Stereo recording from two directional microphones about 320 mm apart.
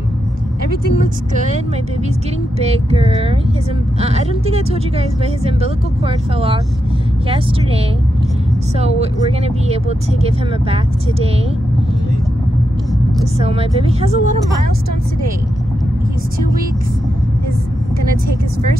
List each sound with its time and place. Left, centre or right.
1.3 s speech: right
2.6 s speech: centre
8.7 s speech: centre
13.4 s speech: centre